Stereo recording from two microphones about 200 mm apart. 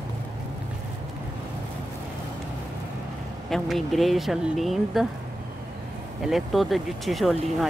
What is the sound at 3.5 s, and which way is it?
Speech, centre (ahead or behind).